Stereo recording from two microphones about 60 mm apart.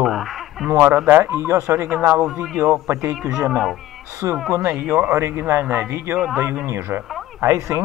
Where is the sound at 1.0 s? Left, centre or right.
Right.